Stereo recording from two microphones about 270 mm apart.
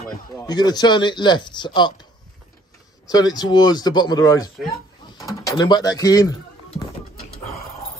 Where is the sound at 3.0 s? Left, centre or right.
Centre.